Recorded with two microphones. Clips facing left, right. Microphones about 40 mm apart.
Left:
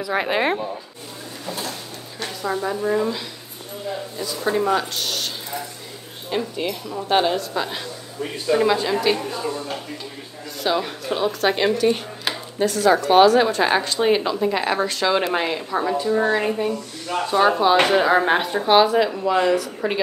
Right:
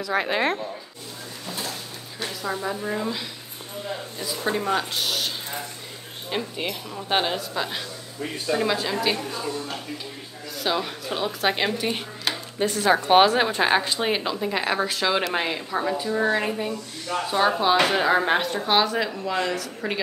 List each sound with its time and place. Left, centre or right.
0.0 s a woman's voice: centre
4.7 s speech: centre
6.3 s a woman's voice: centre
8.2 s a woman's voice: centre
12.8 s speech: right
13.7 s a woman's voice: centre